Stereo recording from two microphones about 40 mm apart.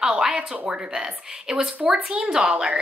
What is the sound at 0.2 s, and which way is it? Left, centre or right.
Speech, right.